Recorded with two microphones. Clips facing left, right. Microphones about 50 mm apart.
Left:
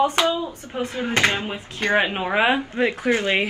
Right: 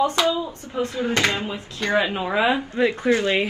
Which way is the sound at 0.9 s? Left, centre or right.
Left.